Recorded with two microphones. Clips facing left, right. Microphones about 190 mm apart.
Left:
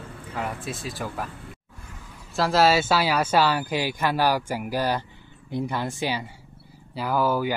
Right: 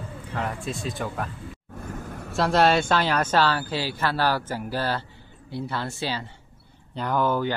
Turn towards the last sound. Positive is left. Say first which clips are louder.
# even
turn(degrees=5)  # may be behind; listen again after turning